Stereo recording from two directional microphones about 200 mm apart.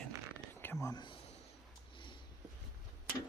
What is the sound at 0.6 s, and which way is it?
Speech, 15° left (ahead or behind).